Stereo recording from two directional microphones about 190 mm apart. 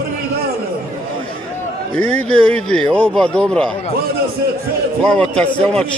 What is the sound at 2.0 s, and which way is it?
Speech, 90° left.